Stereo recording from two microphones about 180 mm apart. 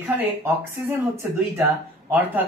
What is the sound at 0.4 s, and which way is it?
Speech, 10° right (ahead or behind).